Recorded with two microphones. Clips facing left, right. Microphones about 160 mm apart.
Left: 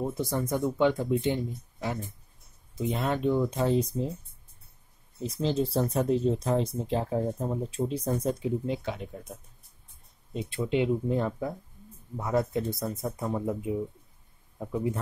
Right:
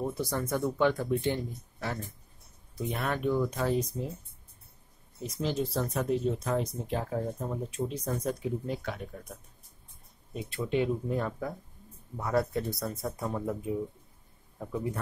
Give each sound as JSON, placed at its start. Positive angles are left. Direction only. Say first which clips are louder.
{"t": 0.0, "sound": "speech", "louder": "left 2 dB", "side_deg": 20}
{"t": 5.2, "sound": "speech", "louder": "left 4 dB", "side_deg": 30}
{"t": 10.3, "sound": "speech", "louder": "left 2 dB", "side_deg": 20}